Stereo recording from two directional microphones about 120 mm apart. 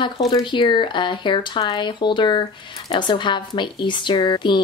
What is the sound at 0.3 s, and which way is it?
A woman's voice, 40° left (ahead or behind).